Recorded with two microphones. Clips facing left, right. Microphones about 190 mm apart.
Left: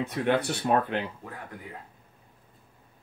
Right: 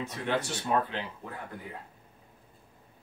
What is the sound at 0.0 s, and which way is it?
Speech, 60° left (ahead or behind).